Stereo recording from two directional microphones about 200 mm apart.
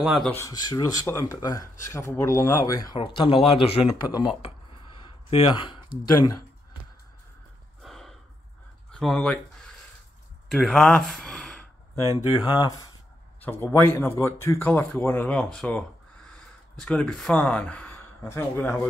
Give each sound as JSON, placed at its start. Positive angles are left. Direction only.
{"t": 0.0, "sound": "speech", "side_deg": 0}
{"t": 0.3, "sound": "speech", "side_deg": 15}
{"t": 7.8, "sound": "gasp", "side_deg": 0}
{"t": 8.9, "sound": "speech", "side_deg": 5}
{"t": 10.5, "sound": "gasp", "side_deg": 0}
{"t": 12.4, "sound": "speech", "side_deg": 20}